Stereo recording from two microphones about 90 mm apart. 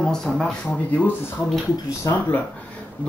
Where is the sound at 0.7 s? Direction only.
15° left (ahead or behind).